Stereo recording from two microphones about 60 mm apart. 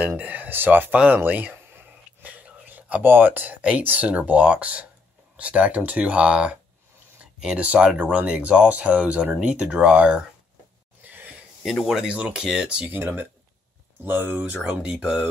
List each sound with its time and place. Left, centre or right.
0.2 s speech: right
2.2 s whispering: right
3.0 s speech: right; by 10.2 s centre
11.1 s a sound: right
11.6 s speech: centre
11.9 s speech: centre
12.8 s speech: right
14.5 s speech: centre